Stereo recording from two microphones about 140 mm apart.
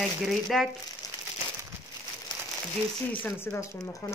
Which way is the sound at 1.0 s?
25° left (ahead or behind).